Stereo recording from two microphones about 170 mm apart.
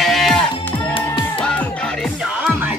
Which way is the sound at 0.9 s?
30° left (ahead or behind).